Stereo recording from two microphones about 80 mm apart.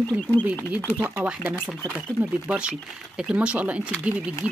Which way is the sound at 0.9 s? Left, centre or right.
Centre.